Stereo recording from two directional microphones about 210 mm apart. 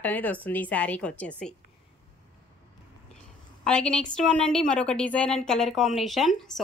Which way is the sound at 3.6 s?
5° left (ahead or behind).